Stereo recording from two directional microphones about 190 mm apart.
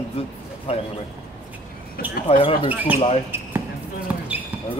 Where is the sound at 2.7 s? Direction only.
10° right (ahead or behind).